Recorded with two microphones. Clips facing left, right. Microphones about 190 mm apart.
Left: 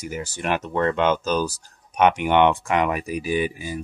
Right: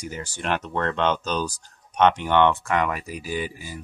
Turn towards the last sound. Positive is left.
turn(degrees=15)  # may be behind; listen again after turning